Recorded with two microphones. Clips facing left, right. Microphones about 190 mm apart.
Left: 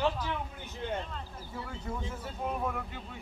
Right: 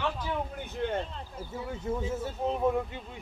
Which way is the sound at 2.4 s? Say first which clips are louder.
Right 7 dB; 20° right (ahead or behind).